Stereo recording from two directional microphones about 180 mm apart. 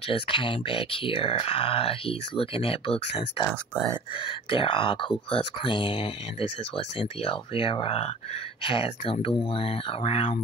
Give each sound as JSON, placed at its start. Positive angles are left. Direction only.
{"t": 0.1, "sound": "speech", "side_deg": 30}
{"t": 3.4, "sound": "speech", "side_deg": 5}
{"t": 4.2, "sound": "speech", "side_deg": 30}